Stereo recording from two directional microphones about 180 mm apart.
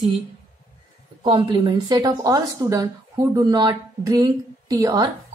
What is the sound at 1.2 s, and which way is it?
A woman's voice, 30° right (ahead or behind).